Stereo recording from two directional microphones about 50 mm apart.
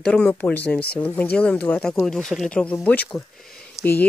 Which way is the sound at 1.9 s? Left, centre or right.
Centre.